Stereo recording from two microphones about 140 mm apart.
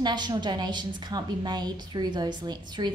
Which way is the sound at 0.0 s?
30° right (ahead or behind).